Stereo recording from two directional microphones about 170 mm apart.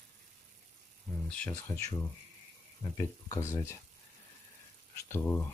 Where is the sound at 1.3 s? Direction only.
10° left (ahead or behind).